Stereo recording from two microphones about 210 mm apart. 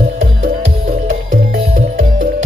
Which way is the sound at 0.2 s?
35° right (ahead or behind).